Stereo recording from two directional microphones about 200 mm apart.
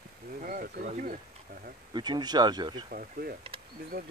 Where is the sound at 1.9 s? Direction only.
20° right (ahead or behind).